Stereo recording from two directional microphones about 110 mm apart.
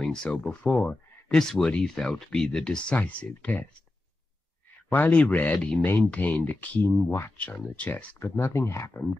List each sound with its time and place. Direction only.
0.0 s speech: 5° left (ahead or behind)
4.8 s speech: 15° left (ahead or behind)
7.3 s speech: 10° left (ahead or behind)